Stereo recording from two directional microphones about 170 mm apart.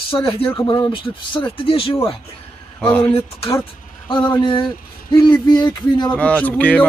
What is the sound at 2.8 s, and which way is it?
Speech, 10° left (ahead or behind).